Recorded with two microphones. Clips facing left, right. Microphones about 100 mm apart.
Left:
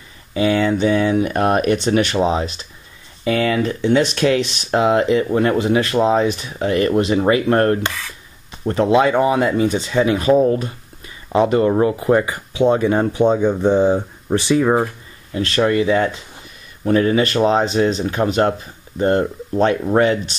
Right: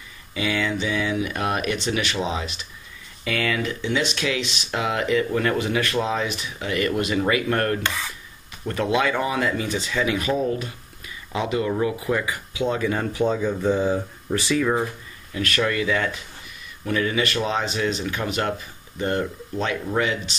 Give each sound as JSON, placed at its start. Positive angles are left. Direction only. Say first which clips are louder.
{"t": 0.3, "sound": "speech", "louder": "left 8 dB", "side_deg": 40}